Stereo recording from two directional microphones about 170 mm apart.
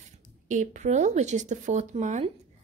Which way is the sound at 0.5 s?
45° right (ahead or behind).